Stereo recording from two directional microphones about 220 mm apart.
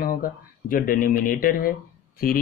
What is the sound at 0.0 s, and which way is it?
A man's voice, 40° left (ahead or behind).